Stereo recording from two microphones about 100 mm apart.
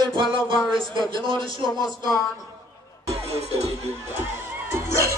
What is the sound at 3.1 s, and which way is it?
Speech, 90° right.